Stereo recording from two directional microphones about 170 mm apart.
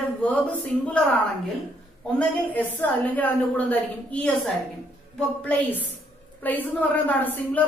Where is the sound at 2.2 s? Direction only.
10° left (ahead or behind).